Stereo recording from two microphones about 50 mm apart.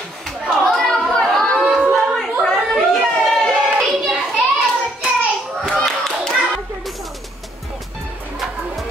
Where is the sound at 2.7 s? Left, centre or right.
Centre.